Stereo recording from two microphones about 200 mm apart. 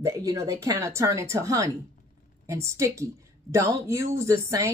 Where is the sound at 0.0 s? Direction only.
15° right (ahead or behind).